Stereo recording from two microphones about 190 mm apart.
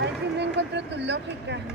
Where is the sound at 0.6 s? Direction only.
65° right (ahead or behind).